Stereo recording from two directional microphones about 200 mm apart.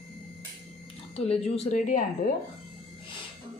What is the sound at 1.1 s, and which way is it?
Speech, 30° left (ahead or behind).